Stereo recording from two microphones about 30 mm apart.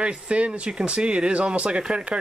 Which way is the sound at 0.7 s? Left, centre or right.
Right.